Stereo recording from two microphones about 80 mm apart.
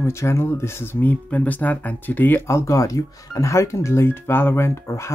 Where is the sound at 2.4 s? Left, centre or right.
Left.